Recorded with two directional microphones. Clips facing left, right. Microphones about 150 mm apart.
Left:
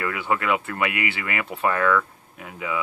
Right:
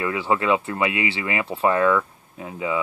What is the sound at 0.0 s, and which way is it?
Speech, 25° right (ahead or behind).